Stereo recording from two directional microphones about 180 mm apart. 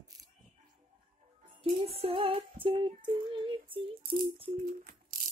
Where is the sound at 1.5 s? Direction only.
30° right (ahead or behind).